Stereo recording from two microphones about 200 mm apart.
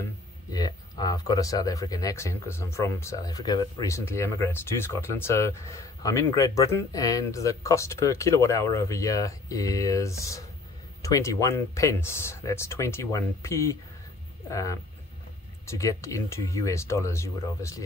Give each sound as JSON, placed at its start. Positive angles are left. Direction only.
{"t": 0.5, "sound": "speech", "side_deg": 20}